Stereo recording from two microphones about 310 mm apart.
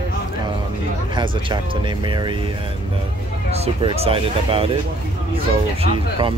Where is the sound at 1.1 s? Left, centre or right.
Centre.